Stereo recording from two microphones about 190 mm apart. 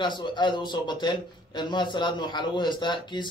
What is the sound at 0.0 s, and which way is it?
A man's voice, 25° left (ahead or behind).